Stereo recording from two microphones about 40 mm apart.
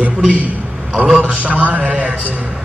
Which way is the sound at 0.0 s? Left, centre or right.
Right.